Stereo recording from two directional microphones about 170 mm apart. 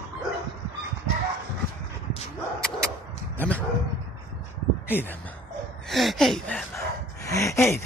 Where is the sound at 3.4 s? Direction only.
10° left (ahead or behind).